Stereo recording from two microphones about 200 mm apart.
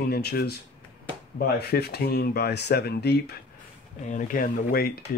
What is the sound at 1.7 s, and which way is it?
Speech, 55° left (ahead or behind).